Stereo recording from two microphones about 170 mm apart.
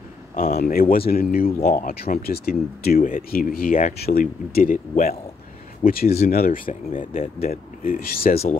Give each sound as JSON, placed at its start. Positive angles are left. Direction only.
{"t": 0.4, "sound": "speech", "side_deg": 60}
{"t": 6.0, "sound": "speech", "side_deg": 40}
{"t": 6.3, "sound": "speech", "side_deg": 60}